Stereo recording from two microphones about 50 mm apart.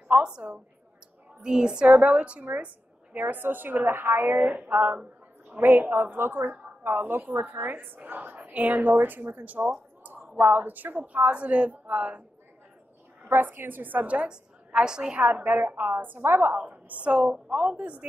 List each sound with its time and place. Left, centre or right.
0.1 s a woman's voice: right
4.5 s a woman's voice: right
5.6 s a woman's voice: right
10.5 s a woman's voice: right
13.3 s a woman's voice: right; by 15.1 s centre
15.4 s a woman's voice: right
16.5 s a woman's voice: right
17.5 s a woman's voice: centre
17.7 s a woman's voice: right